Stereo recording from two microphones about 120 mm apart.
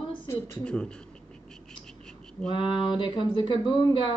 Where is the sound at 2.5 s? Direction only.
45° left (ahead or behind).